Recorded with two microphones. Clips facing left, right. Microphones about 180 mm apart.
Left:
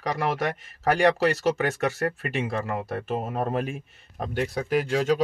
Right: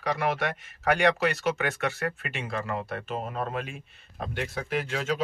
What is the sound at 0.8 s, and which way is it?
Speech, 35° left (ahead or behind).